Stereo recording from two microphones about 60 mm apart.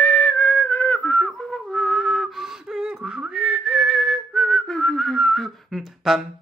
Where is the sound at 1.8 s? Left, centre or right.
Centre.